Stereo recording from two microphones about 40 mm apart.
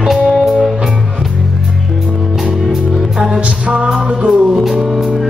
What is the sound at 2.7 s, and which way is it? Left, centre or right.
Music, centre.